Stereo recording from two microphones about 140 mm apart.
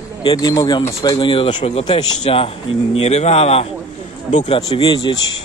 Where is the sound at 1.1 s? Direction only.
40° left (ahead or behind).